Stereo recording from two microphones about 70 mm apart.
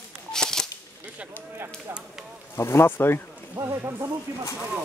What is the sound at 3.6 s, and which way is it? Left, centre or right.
Speech, right.